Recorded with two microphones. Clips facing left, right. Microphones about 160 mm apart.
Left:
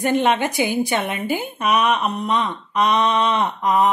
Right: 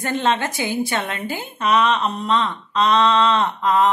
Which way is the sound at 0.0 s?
15° left (ahead or behind).